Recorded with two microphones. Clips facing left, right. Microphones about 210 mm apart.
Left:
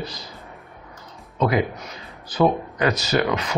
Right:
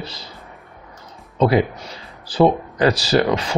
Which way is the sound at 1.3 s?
30° right (ahead or behind).